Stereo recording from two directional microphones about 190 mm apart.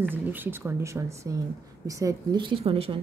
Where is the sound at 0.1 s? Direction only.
10° right (ahead or behind).